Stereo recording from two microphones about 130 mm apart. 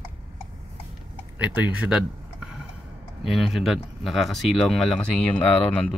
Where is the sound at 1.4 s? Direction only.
10° right (ahead or behind).